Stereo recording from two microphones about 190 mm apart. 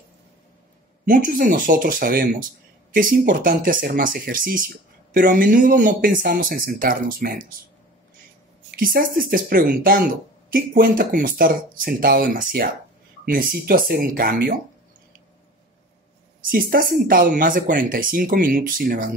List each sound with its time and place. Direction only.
1.0 s speech: 45° right (ahead or behind)
8.7 s speech: 50° right (ahead or behind)
16.3 s speech: 50° right (ahead or behind)